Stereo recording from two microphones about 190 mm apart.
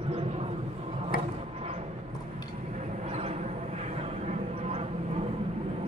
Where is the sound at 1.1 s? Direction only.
50° left (ahead or behind).